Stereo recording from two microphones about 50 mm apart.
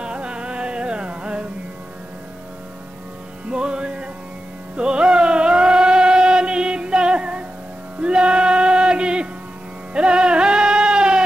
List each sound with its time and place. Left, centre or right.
0.0 s music: centre
3.4 s music: centre